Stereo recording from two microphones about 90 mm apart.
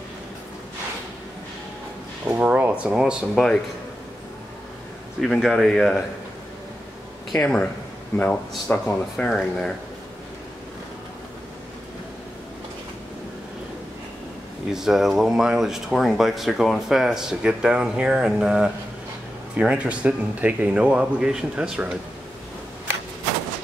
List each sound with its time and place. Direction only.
2.2 s speech: 20° right (ahead or behind)
5.2 s speech: centre (ahead or behind)
7.3 s speech: 10° left (ahead or behind)
9.1 s speech: 5° left (ahead or behind)
14.7 s speech: 5° right (ahead or behind)